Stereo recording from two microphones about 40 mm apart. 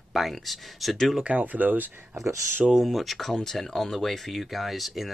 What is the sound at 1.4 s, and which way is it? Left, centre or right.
Speech, right.